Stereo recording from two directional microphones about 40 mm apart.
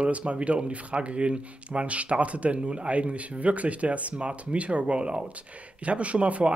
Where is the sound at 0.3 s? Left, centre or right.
Right.